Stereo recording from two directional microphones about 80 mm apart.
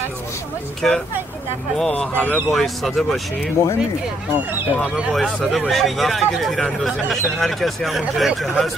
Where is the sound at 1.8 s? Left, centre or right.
Centre.